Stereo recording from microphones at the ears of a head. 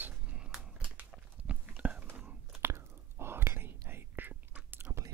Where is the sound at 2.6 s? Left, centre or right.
Right.